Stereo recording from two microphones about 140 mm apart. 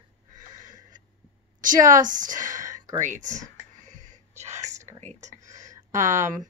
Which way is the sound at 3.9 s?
65° right (ahead or behind).